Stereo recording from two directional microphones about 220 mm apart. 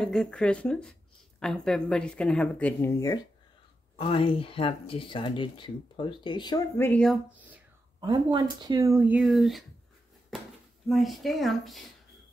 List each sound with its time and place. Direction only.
0.0 s speech: 5° left (ahead or behind)
4.0 s speech: 25° left (ahead or behind)
6.9 s speech: 5° left (ahead or behind)
8.0 s speech: 20° right (ahead or behind); by 9.7 s centre (ahead or behind)
10.9 s speech: centre (ahead or behind)